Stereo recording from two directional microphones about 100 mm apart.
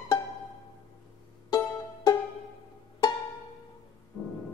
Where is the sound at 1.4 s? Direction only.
40° left (ahead or behind).